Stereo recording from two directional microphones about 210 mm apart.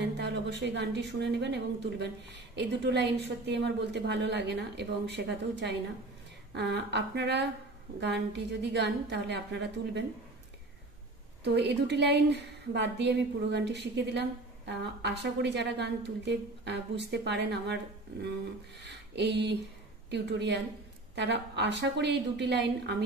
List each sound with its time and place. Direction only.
0.0 s a woman's voice: 55° right (ahead or behind)
11.4 s a woman's voice: 55° right (ahead or behind)
18.9 s a sound: 55° right (ahead or behind)
20.1 s a woman's voice: 55° right (ahead or behind)